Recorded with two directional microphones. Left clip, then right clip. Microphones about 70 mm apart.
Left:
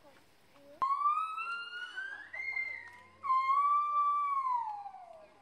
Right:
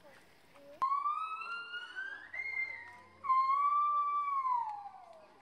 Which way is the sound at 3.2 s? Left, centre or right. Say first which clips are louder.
Left 1 dB; left.